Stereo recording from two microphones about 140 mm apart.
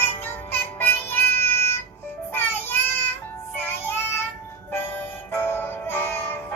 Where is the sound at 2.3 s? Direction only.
15° left (ahead or behind).